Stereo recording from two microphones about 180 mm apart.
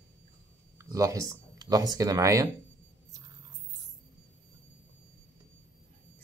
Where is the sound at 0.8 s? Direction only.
15° right (ahead or behind).